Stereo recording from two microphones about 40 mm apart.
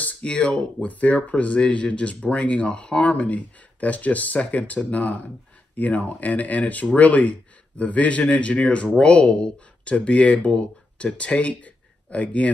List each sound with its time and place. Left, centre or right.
0.2 s speech: left
0.7 s speech: left